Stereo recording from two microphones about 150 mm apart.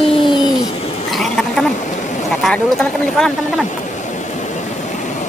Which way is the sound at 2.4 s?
5° left (ahead or behind).